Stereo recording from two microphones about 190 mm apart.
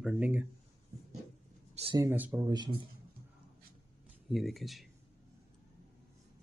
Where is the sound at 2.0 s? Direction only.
10° right (ahead or behind).